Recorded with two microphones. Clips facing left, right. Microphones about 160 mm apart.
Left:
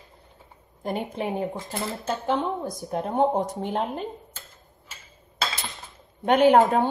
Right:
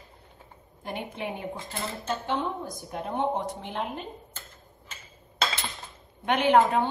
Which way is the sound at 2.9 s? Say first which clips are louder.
Left 6 dB; 40° left (ahead or behind).